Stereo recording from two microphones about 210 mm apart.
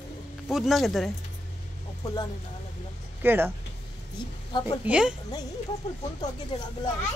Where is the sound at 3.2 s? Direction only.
10° right (ahead or behind).